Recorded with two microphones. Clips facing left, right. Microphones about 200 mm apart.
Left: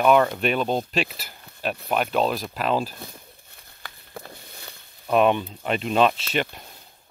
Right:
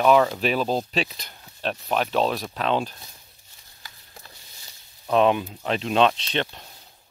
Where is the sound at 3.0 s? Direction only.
55° left (ahead or behind).